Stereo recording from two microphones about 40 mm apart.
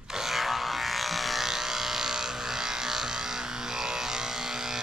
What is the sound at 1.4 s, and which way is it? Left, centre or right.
Electric toothbrush, centre.